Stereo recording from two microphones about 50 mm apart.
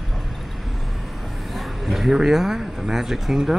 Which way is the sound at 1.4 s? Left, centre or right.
Centre.